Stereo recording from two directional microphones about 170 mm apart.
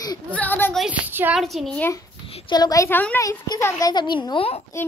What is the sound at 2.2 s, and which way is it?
A child's voice, 30° left (ahead or behind).